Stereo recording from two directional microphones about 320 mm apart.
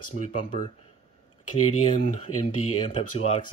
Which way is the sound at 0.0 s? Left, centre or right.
Left.